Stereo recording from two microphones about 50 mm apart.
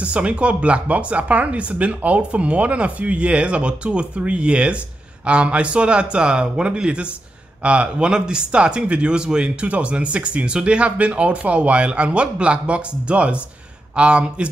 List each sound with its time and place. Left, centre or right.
0.0 s speech: right